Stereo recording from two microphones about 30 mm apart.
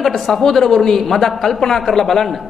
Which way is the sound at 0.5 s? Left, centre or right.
Centre.